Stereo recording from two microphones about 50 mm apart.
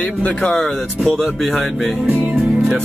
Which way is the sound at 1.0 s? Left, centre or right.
Centre.